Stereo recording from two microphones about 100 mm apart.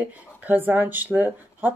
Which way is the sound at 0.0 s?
20° right (ahead or behind).